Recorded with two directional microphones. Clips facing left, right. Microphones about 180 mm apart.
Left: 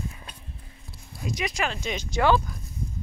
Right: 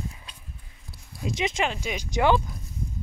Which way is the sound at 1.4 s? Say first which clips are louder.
Right 3 dB; 25° right (ahead or behind).